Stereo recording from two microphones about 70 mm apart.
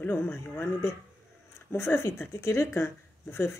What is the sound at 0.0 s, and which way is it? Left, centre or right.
Speech, left.